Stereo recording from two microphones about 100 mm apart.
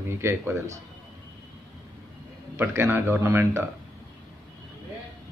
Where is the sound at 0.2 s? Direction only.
25° right (ahead or behind).